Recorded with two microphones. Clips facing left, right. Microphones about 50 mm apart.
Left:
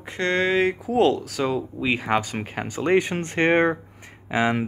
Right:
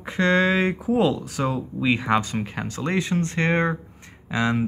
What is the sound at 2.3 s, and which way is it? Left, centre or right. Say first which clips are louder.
Speech: even; left.